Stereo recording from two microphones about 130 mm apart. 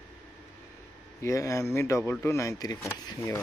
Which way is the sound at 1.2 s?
25° left (ahead or behind).